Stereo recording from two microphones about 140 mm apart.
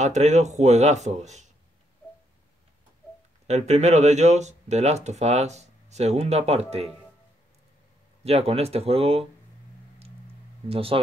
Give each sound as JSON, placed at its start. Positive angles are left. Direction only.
{"t": 0.0, "sound": "speech", "side_deg": -55}
{"t": 3.4, "sound": "speech", "side_deg": -55}
{"t": 8.2, "sound": "speech", "side_deg": -50}
{"t": 10.7, "sound": "speech", "side_deg": -40}